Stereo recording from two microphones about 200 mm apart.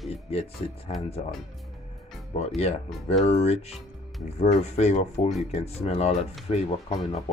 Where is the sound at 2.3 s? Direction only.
30° left (ahead or behind).